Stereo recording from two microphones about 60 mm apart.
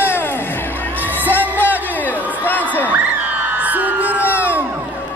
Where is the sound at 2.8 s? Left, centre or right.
Right.